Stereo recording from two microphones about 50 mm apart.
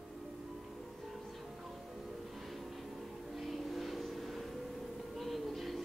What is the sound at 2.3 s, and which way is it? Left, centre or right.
Vehicle, centre.